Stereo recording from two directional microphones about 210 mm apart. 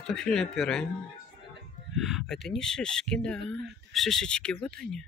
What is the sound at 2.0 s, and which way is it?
Speech, centre (ahead or behind).